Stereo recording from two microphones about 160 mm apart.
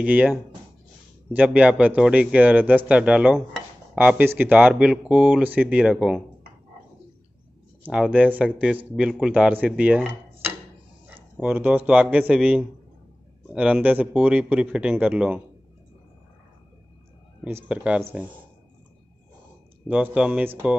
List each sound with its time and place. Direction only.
0.0 s speech: 10° right (ahead or behind)
1.3 s speech: 10° right (ahead or behind)
7.8 s speech: 5° right (ahead or behind)
17.5 s speech: 10° right (ahead or behind)
19.9 s speech: 10° right (ahead or behind)